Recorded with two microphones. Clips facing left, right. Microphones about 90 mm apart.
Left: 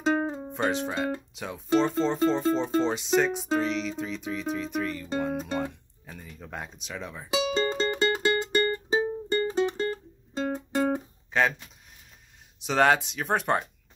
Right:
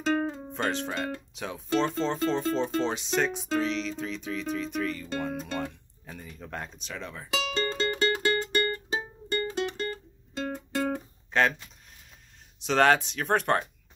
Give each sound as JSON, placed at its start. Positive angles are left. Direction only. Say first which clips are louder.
{"t": 0.0, "sound": "music", "louder": "left 2 dB", "side_deg": 15}
{"t": 0.5, "sound": "speech", "louder": "left 2 dB", "side_deg": 5}
{"t": 1.8, "sound": "music", "louder": "left 3 dB", "side_deg": 5}
{"t": 6.0, "sound": "speech", "louder": "right 1 dB", "side_deg": 0}
{"t": 7.6, "sound": "music", "louder": "left 2 dB", "side_deg": 10}
{"t": 10.8, "sound": "music", "louder": "left 3 dB", "side_deg": 5}
{"t": 12.5, "sound": "music", "louder": "even", "side_deg": 5}